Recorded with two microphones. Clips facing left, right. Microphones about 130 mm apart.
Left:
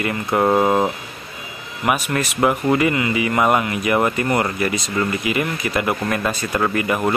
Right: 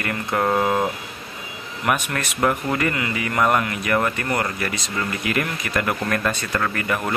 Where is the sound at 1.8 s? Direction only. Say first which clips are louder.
Left 3 dB; 5° left (ahead or behind).